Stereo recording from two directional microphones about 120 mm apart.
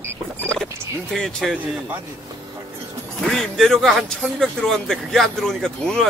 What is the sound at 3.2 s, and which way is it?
Speech, centre (ahead or behind).